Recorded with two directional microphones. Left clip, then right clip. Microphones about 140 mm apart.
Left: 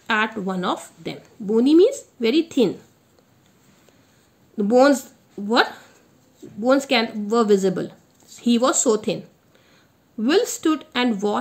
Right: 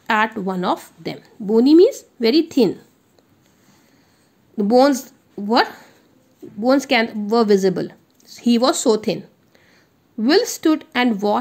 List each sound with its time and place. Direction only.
0.0 s a woman's voice: 30° right (ahead or behind)
4.6 s a woman's voice: 30° right (ahead or behind)